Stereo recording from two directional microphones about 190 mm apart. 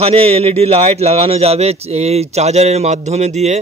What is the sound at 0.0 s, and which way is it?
A man's voice, 30° right (ahead or behind).